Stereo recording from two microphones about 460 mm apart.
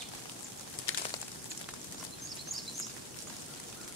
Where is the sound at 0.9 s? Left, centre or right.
Left.